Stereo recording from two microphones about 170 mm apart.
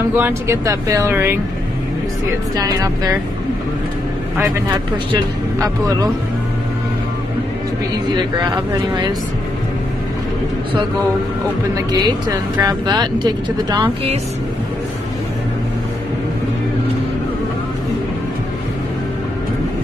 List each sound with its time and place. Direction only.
0.1 s speech: 15° right (ahead or behind)
2.5 s speech: 20° right (ahead or behind)
4.4 s speech: 20° right (ahead or behind)
8.1 s speech: 25° right (ahead or behind)
11.7 s speech: 20° right (ahead or behind)